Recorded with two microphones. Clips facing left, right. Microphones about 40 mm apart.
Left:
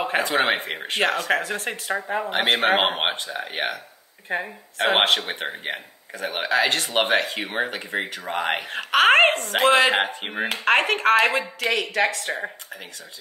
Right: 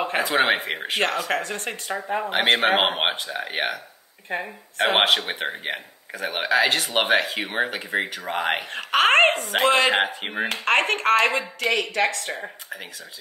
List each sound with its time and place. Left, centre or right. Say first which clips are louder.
0.0 s speech: even; centre